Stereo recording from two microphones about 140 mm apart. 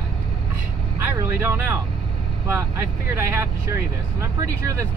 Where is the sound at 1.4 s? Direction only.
20° right (ahead or behind).